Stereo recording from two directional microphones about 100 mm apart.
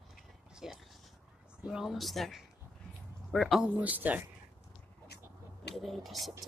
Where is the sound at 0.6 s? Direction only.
5° right (ahead or behind).